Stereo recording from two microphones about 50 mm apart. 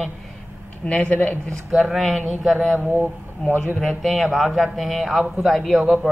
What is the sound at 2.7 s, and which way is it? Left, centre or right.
Speech, right.